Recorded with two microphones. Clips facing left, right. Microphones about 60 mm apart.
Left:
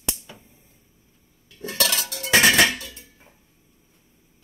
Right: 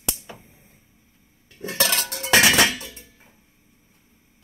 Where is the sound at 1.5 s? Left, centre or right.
Right.